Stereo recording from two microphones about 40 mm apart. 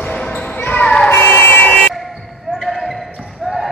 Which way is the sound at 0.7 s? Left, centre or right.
Left.